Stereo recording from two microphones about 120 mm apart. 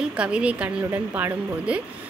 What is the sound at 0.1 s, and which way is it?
A woman's voice, 10° right (ahead or behind).